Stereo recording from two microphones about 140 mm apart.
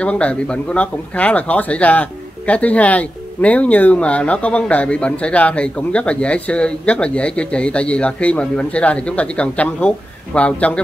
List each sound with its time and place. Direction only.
0.0 s speech: 10° left (ahead or behind)